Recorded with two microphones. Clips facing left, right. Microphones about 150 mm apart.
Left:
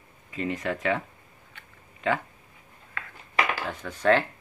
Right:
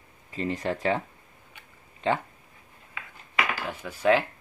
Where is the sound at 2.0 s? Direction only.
30° right (ahead or behind).